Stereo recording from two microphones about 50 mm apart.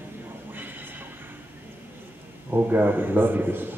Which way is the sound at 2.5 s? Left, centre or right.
Right.